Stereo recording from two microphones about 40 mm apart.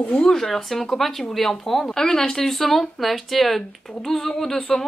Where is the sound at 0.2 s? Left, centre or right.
Centre.